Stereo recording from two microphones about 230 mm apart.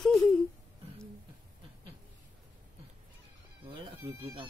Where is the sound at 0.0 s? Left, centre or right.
Centre.